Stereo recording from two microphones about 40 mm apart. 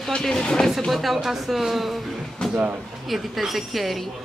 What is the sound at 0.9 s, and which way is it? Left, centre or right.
Speech, centre.